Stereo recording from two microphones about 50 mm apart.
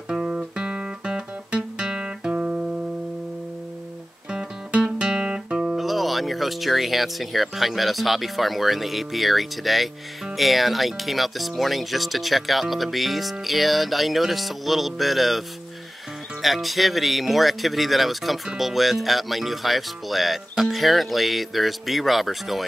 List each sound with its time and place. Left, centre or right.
0.1 s guitar: centre
4.3 s guitar: centre
5.8 s speech: centre